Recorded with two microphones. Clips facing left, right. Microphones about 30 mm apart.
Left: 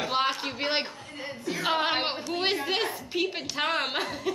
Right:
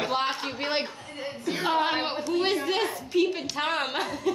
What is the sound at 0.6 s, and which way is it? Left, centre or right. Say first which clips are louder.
A woman's voice: even; centre.